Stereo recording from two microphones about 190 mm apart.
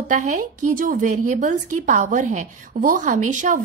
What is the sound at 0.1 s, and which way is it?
A woman's voice, 40° right (ahead or behind).